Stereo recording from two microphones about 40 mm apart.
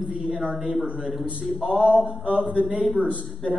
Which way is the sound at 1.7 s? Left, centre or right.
Right.